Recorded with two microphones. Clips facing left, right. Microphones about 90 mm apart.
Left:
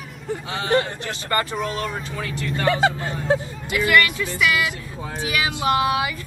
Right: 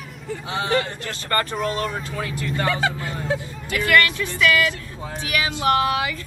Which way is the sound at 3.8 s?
15° left (ahead or behind).